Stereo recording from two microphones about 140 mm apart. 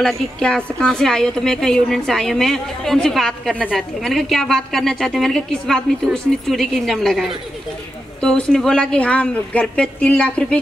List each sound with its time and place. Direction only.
0.0 s a woman's voice: 5° left (ahead or behind)